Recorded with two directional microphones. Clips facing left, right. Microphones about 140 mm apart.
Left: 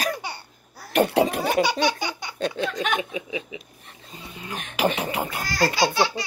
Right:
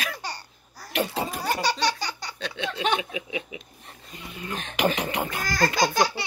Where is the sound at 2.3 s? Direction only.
45° left (ahead or behind).